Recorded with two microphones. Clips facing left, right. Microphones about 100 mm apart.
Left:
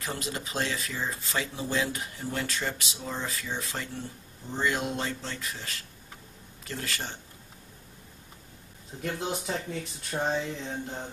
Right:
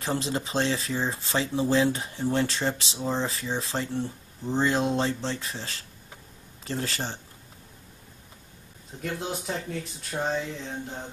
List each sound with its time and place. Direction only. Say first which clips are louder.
0.0 s speech: right 6 dB; 30° right (ahead or behind)
9.0 s speech: even; centre (ahead or behind)